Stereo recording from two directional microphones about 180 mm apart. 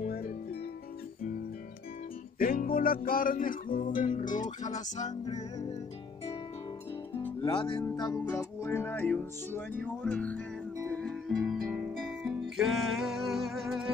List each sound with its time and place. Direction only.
0.0 s music: 55° left (ahead or behind)
2.3 s music: 50° left (ahead or behind)
5.2 s music: 20° left (ahead or behind)
7.4 s speech: 25° left (ahead or behind)
7.8 s music: 15° left (ahead or behind); by 13.9 s centre (ahead or behind)